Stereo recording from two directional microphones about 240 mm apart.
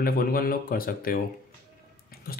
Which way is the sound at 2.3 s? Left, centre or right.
Left.